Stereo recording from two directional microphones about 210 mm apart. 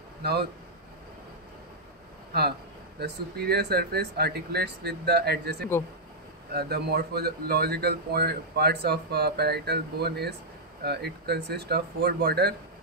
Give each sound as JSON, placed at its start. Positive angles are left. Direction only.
{"t": 0.2, "sound": "speech", "side_deg": -50}
{"t": 3.0, "sound": "a man's voice", "side_deg": -50}